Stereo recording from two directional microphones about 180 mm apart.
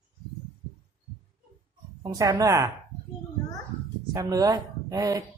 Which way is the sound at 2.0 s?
20° right (ahead or behind).